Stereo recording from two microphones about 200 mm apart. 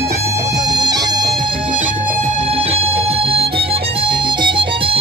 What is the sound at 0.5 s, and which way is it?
Music, 20° right (ahead or behind).